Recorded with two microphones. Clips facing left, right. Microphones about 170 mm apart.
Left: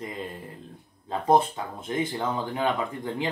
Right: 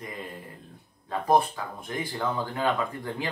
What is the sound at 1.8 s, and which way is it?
Speech, 20° left (ahead or behind).